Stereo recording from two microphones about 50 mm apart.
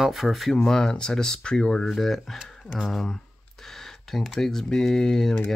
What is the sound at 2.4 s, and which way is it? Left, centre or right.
Speech, centre.